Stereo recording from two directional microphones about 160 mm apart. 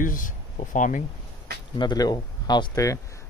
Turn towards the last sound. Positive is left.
turn(degrees=20)  # may be behind; listen again after turning